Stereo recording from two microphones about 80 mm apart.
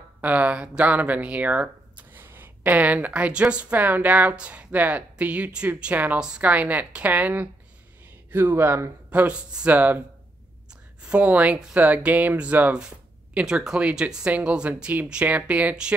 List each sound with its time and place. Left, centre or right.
0.2 s speech: centre
9.2 s speech: centre